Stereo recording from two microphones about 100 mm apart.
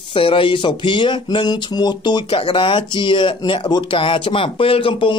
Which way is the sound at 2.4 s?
60° left (ahead or behind).